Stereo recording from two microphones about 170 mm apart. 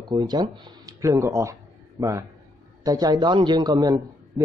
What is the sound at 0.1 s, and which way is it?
Speech, 25° right (ahead or behind).